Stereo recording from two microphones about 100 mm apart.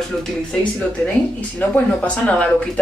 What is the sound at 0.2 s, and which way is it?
Speech, 5° left (ahead or behind).